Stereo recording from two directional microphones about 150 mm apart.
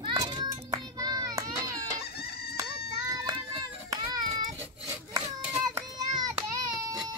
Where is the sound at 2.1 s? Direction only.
90° left.